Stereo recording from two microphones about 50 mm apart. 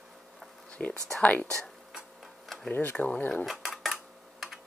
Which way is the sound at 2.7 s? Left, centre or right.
Left.